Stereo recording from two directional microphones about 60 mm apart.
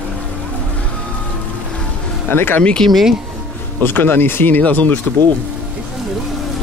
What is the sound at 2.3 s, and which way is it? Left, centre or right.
Speech, left.